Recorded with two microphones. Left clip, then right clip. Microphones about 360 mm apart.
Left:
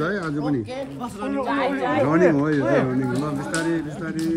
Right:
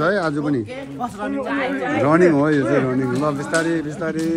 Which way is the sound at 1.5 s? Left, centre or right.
Left.